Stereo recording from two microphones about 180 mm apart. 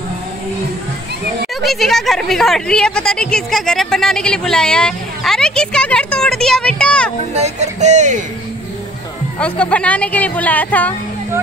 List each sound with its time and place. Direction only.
1.6 s a woman's voice: centre (ahead or behind)
7.3 s music: 40° right (ahead or behind)
9.4 s a woman's voice: 5° left (ahead or behind)